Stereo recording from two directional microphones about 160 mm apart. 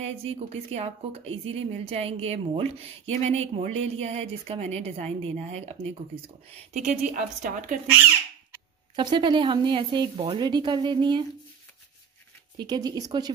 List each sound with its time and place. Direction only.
0.0 s a woman's voice: 40° right (ahead or behind); by 7.8 s 55° right (ahead or behind)
8.9 s speech: 30° right (ahead or behind)
12.5 s speech: 25° right (ahead or behind)